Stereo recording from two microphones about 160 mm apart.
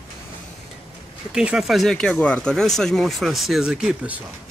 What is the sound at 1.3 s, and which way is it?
Speech, 5° right (ahead or behind).